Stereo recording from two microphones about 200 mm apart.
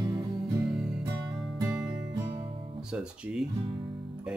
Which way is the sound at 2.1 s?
20° right (ahead or behind).